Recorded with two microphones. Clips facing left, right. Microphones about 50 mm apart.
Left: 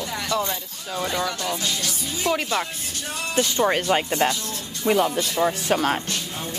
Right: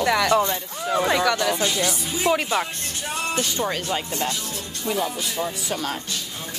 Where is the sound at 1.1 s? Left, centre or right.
Right.